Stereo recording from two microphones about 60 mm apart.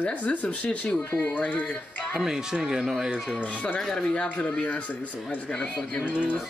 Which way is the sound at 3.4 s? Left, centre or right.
Left.